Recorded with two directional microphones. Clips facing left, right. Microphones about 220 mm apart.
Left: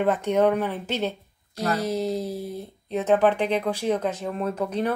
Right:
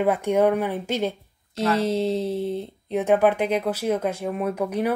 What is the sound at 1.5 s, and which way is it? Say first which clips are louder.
Speech: right 3 dB; 25° right (ahead or behind).